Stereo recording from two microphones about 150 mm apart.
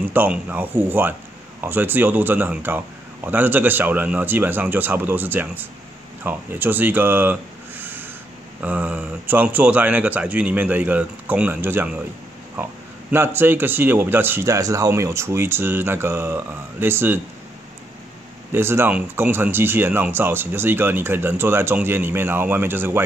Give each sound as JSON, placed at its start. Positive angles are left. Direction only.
{"t": 0.1, "sound": "speech", "side_deg": -10}
{"t": 13.1, "sound": "speech", "side_deg": -15}
{"t": 18.5, "sound": "speech", "side_deg": -15}